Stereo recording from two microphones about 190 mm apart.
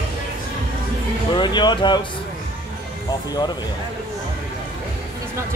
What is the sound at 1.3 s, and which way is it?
Speech, 25° left (ahead or behind).